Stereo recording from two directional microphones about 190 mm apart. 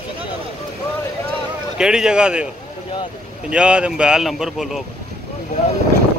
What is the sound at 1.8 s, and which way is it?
Speech, 5° right (ahead or behind).